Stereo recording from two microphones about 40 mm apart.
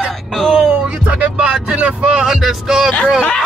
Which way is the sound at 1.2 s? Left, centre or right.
Right.